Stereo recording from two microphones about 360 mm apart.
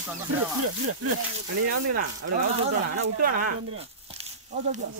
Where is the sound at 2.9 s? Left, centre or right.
Right.